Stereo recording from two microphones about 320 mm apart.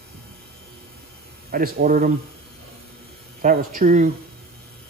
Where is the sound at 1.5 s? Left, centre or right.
Right.